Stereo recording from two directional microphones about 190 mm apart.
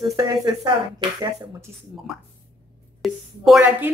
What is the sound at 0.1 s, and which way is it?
Speech, 20° right (ahead or behind).